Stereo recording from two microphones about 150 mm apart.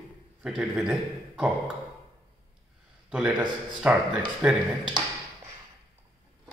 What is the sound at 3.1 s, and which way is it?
A man's voice, 5° right (ahead or behind).